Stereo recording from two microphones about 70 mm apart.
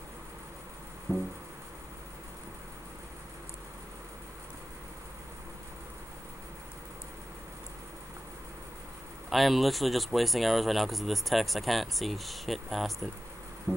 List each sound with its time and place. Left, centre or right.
1.1 s music: right
9.3 s speech: centre
13.7 s insect: right